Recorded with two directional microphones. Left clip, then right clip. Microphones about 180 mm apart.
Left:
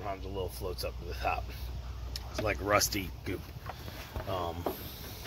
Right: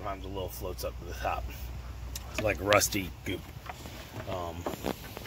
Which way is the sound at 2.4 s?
40° right (ahead or behind).